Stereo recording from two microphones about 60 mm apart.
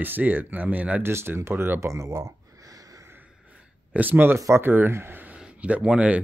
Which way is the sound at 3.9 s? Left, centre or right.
Right.